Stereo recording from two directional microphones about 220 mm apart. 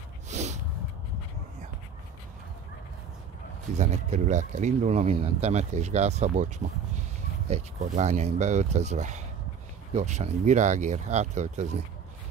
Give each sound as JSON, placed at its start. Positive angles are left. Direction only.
{"t": 0.3, "sound": "snort", "side_deg": -30}
{"t": 3.7, "sound": "speech", "side_deg": -30}
{"t": 7.4, "sound": "speech", "side_deg": -30}